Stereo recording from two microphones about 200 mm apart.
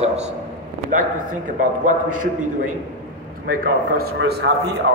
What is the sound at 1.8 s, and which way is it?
Speech, 40° right (ahead or behind).